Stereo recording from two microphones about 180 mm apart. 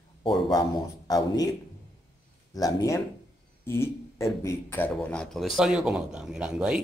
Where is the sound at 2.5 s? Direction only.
20° left (ahead or behind).